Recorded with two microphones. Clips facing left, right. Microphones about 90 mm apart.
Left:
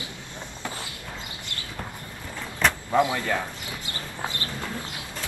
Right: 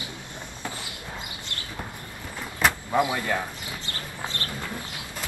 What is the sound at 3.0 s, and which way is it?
Speech, 10° right (ahead or behind).